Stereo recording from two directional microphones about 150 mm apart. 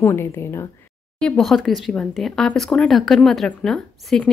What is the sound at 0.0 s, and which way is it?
Speech, 15° left (ahead or behind).